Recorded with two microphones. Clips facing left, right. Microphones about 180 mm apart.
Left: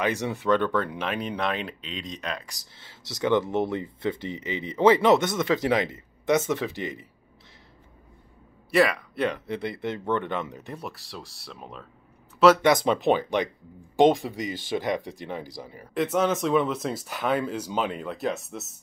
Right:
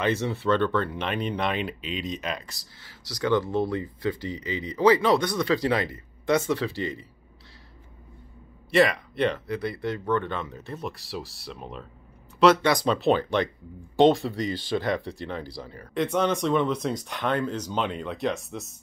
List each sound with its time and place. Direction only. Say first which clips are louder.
0.0 s speech: right 1 dB; 15° left (ahead or behind); by 2.4 s centre (ahead or behind)
2.4 s speech: right 1 dB; 20° left (ahead or behind)
8.6 s a man's voice: right 1 dB; 5° left (ahead or behind)
9.5 s speech: right 1 dB; 20° left (ahead or behind)
10.9 s speech: right 5 dB; centre (ahead or behind)
12.6 s speech: left 1 dB; 20° left (ahead or behind); by 18.7 s centre (ahead or behind)